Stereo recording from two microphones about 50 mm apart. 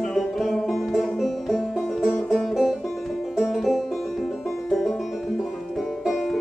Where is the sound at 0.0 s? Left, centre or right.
Centre.